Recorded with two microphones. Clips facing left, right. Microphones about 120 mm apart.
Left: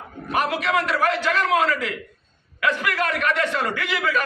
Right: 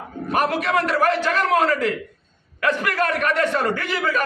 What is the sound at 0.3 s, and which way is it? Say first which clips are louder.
A man's voice: right 2 dB; 45° right (ahead or behind).